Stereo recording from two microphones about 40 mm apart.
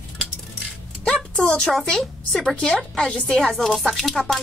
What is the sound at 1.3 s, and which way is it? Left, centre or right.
Speech, centre.